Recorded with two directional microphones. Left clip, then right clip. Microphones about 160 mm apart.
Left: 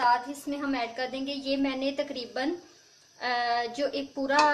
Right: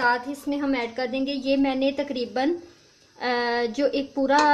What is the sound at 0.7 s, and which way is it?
A child's voice, 50° right (ahead or behind).